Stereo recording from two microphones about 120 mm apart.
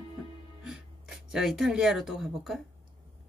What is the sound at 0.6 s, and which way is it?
Speech, 5° right (ahead or behind).